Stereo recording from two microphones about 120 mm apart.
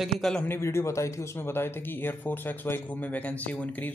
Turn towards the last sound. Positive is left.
turn(degrees=15)  # may be behind; listen again after turning